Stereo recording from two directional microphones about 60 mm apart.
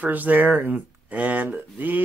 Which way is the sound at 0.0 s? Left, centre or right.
Right.